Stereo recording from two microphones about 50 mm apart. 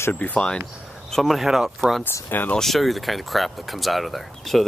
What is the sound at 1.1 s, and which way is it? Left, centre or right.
Speech, centre.